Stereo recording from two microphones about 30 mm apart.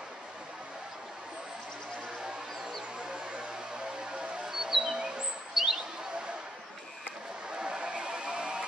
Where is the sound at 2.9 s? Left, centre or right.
Right.